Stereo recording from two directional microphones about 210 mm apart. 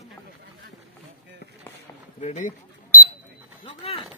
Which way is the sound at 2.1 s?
35° left (ahead or behind).